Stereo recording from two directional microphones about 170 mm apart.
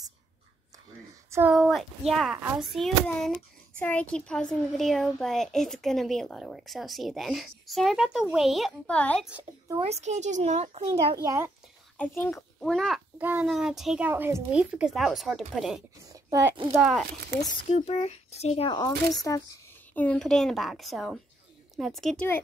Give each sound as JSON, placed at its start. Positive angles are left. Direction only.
{"t": 1.5, "sound": "a child's voice", "side_deg": 0}
{"t": 9.8, "sound": "a child's voice", "side_deg": -40}
{"t": 11.2, "sound": "a child's voice", "side_deg": -15}
{"t": 12.0, "sound": "speech", "side_deg": 10}
{"t": 12.6, "sound": "a child's voice", "side_deg": 0}
{"t": 16.1, "sound": "a sound", "side_deg": -20}
{"t": 17.6, "sound": "a child's voice", "side_deg": 35}
{"t": 19.9, "sound": "a child's voice", "side_deg": 10}